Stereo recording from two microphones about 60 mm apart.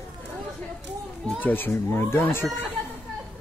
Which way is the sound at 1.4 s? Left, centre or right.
Left.